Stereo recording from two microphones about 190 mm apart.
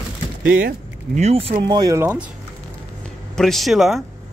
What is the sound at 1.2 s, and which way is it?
Speech, 30° right (ahead or behind).